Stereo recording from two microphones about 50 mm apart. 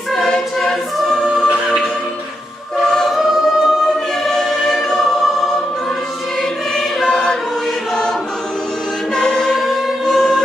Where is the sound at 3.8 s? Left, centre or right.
Centre.